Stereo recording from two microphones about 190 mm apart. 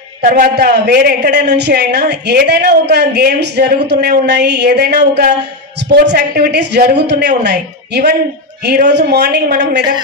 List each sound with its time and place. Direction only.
0.2 s a man's voice: 50° right (ahead or behind)